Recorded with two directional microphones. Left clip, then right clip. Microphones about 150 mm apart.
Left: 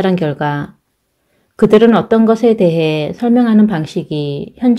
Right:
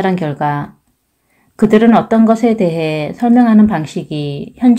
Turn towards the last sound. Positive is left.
turn(degrees=25)  # may be behind; listen again after turning